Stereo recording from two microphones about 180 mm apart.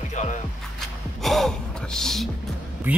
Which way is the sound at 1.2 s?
Centre (ahead or behind).